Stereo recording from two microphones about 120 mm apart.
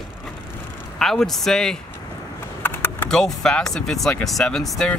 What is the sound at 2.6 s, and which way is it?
Typing, 15° left (ahead or behind).